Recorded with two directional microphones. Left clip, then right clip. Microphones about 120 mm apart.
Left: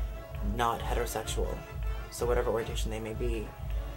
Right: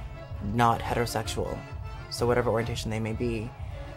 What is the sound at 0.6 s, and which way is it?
Speech, 20° right (ahead or behind).